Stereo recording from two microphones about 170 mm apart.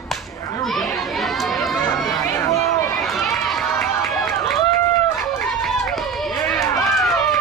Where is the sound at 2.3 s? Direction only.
15° left (ahead or behind).